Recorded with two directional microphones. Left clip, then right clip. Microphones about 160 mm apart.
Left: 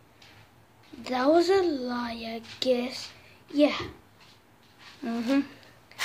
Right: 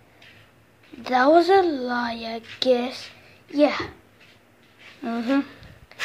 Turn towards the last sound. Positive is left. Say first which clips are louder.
# right 3 dB
turn(degrees=0)  # may be behind; listen again after turning